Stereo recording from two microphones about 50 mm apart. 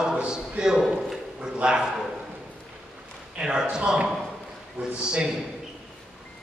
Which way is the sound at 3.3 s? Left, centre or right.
Centre.